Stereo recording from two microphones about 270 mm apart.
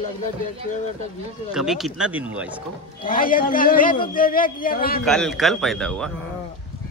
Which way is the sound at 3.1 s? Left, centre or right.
Left.